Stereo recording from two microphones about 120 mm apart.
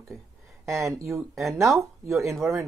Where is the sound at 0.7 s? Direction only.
25° right (ahead or behind).